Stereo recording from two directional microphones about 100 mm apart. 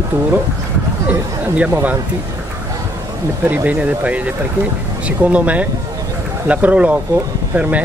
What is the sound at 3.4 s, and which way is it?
Speech, 15° right (ahead or behind).